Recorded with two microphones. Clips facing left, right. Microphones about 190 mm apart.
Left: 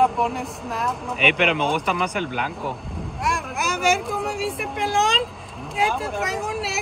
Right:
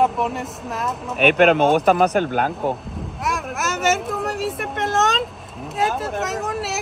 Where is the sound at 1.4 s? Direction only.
45° right (ahead or behind).